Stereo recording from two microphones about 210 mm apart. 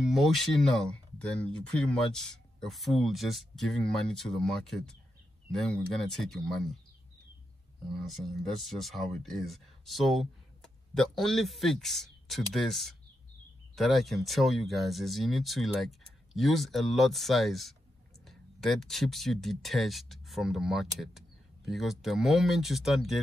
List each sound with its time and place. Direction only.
0.0 s speech: centre (ahead or behind)
7.9 s speech: centre (ahead or behind)